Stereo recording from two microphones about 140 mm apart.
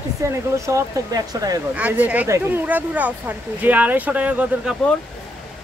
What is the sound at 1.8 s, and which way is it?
Speech, 10° right (ahead or behind).